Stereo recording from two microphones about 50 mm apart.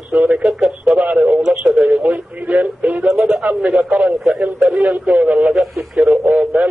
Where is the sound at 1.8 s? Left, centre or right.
Right.